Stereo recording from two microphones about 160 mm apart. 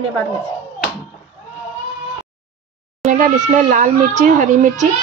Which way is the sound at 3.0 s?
50° right (ahead or behind).